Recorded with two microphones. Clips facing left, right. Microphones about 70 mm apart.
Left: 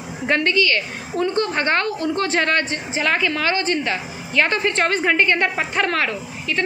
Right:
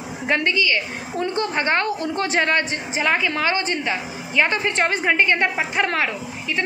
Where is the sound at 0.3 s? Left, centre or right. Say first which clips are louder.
Left 2 dB; centre.